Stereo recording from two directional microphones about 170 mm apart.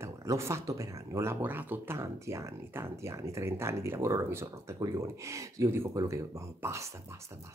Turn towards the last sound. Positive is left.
turn(degrees=-15)  # may be behind; listen again after turning